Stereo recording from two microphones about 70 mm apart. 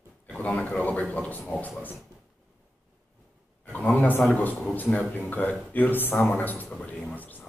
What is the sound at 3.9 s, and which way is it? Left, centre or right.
A man's voice, left.